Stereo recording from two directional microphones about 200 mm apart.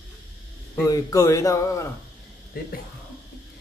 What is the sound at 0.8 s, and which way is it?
A man's voice, 15° left (ahead or behind).